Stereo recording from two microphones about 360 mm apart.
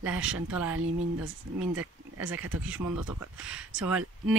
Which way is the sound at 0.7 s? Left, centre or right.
Right.